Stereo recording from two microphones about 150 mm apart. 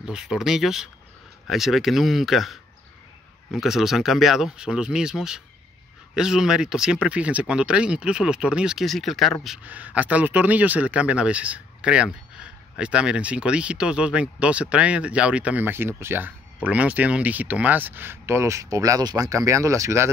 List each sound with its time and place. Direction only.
0.0 s speech: 5° right (ahead or behind); by 20.1 s 20° right (ahead or behind)